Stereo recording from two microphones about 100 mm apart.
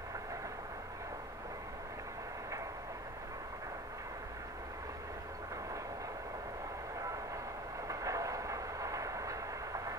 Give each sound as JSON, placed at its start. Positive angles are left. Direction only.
{"t": 7.9, "sound": "train", "side_deg": -35}